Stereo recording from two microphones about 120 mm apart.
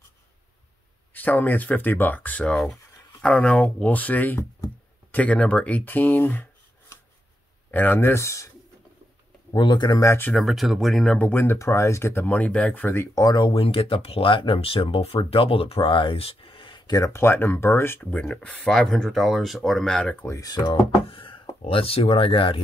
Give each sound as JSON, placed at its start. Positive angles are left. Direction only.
{"t": 1.1, "sound": "speech", "side_deg": 15}
{"t": 7.7, "sound": "speech", "side_deg": 15}
{"t": 9.5, "sound": "speech", "side_deg": 40}
{"t": 10.3, "sound": "speech", "side_deg": 0}
{"t": 11.1, "sound": "speech", "side_deg": 15}
{"t": 18.2, "sound": "speech", "side_deg": 10}
{"t": 20.2, "sound": "speech", "side_deg": 30}
{"t": 21.1, "sound": "a sound", "side_deg": 45}
{"t": 21.6, "sound": "speech", "side_deg": 50}